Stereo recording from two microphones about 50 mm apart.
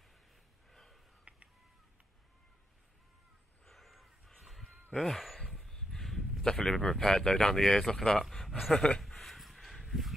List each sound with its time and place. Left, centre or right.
0.7 s snort: centre
1.3 s a sound: right
3.6 s a sound: centre
4.4 s fowl: centre
4.9 s speech: centre
5.5 s dog: centre
6.4 s speech: centre
8.7 s speech: centre
9.0 s a sound: centre